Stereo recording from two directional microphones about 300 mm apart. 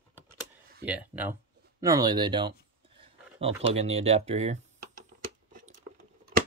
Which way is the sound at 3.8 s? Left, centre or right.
Right.